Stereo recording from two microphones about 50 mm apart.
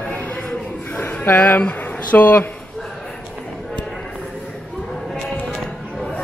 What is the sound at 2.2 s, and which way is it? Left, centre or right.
Speech, left.